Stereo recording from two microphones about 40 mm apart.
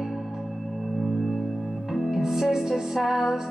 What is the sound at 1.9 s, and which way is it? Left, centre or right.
Music, centre.